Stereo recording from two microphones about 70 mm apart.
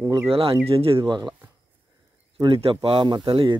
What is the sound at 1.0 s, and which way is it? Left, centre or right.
Speech, right.